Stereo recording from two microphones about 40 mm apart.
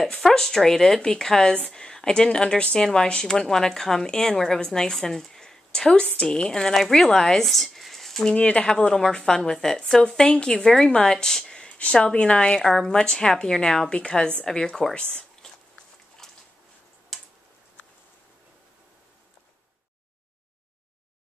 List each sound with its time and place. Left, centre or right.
0.2 s speech: centre
5.0 s a sound: centre
5.9 s speech: left
7.4 s a sound: centre
8.4 s a woman's voice: left
8.6 s speech: centre
11.8 s a woman's voice: left
12.5 s a woman's voice: centre
16.2 s a sound: centre
17.1 s tick-tock: centre